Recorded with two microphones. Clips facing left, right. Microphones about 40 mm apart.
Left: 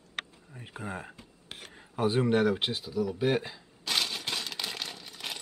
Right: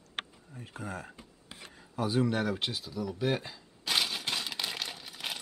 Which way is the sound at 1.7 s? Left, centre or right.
Left.